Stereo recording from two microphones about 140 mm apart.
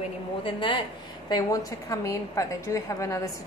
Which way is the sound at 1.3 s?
25° left (ahead or behind).